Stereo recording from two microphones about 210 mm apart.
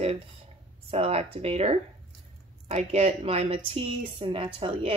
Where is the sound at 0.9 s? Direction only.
30° right (ahead or behind).